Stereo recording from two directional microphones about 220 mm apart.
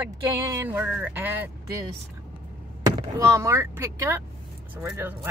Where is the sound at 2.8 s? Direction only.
15° right (ahead or behind).